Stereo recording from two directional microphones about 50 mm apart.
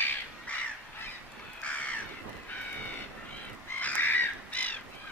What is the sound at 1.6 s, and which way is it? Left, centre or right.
Crow, left.